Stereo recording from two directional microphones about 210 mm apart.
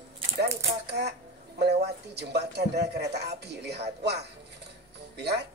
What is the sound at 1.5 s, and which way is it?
Speech, 50° right (ahead or behind).